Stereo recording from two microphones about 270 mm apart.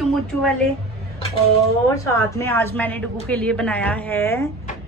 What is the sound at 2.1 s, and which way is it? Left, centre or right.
A woman's voice, centre.